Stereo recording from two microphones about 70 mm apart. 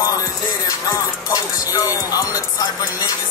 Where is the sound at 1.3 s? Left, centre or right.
Left.